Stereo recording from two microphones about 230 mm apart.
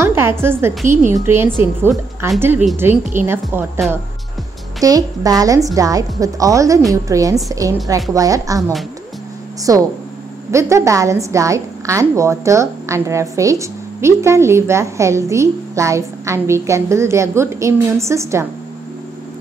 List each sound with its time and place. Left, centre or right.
0.0 s a woman's voice: centre
4.8 s a woman's voice: centre